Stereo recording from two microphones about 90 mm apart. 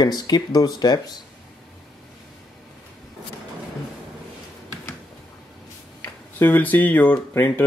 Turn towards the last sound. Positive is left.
turn(degrees=25)  # may be behind; listen again after turning